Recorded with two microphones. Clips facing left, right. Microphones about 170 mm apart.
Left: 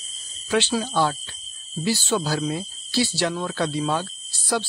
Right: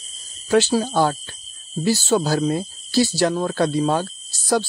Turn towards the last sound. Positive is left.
turn(degrees=-45)  # may be behind; listen again after turning